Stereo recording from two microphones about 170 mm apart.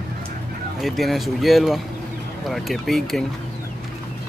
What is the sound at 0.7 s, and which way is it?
Speech, centre (ahead or behind).